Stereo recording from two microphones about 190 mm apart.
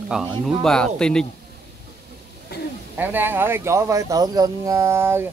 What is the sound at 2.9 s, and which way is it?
Speech, 10° right (ahead or behind).